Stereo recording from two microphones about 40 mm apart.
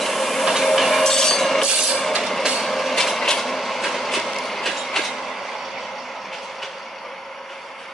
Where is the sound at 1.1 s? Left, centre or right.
Centre.